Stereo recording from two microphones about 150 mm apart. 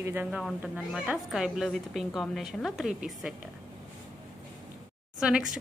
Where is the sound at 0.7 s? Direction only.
Centre (ahead or behind).